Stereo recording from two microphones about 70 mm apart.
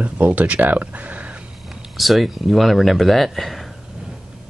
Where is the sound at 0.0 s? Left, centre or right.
Right.